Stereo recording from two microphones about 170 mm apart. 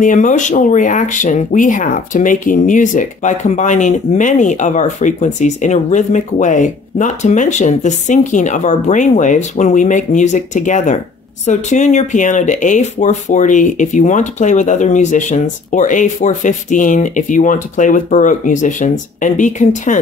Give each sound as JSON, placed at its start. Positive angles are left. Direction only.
{"t": 0.0, "sound": "speech", "side_deg": 50}